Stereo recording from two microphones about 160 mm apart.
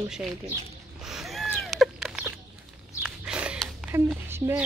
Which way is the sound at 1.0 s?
5° right (ahead or behind).